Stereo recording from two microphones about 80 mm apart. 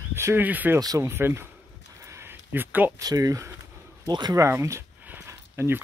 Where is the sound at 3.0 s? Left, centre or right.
Right.